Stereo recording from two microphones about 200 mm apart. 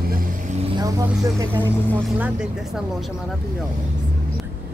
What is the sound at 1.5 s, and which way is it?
Speech, 10° left (ahead or behind).